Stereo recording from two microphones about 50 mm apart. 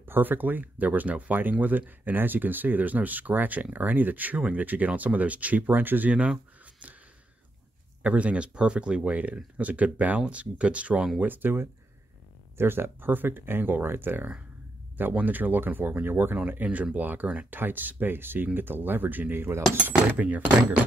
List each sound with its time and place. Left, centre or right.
0.0 s speech: right
6.6 s a sound: right
8.0 s speech: right
11.1 s speech: right
16.3 s speech: right
17.6 s speech: right
20.2 s speech: right